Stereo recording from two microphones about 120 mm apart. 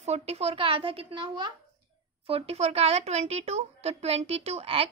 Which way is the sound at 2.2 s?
55° right (ahead or behind).